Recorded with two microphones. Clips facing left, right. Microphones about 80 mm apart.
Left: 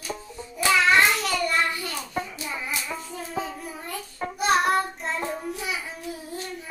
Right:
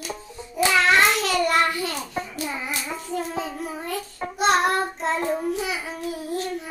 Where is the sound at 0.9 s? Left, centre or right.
Right.